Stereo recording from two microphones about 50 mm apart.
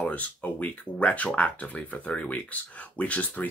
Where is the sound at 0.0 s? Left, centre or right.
Left.